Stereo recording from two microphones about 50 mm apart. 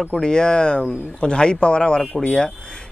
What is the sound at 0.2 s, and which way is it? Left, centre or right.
Speech, centre.